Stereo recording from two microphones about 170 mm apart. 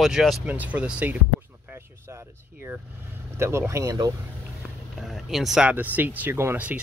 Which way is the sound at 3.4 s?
15° right (ahead or behind).